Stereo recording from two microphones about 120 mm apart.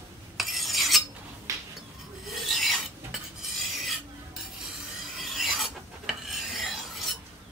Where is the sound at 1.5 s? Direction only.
25° right (ahead or behind).